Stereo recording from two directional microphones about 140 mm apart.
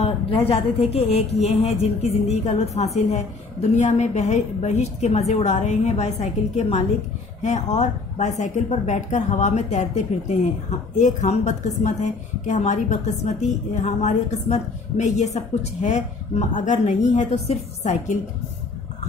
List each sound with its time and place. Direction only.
0.0 s a woman's voice: 45° left (ahead or behind); by 18.2 s 60° left (ahead or behind)